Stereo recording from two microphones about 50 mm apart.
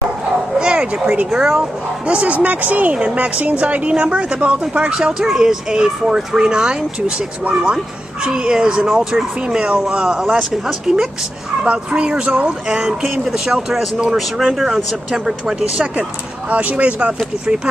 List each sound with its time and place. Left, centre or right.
0.6 s speech: centre
1.4 s speech: centre
2.0 s speech: right
5.2 s speech: centre
15.1 s speech: centre
16.0 s speech: right